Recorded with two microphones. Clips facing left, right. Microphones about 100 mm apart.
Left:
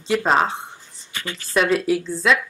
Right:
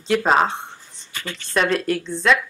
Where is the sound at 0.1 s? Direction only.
Centre (ahead or behind).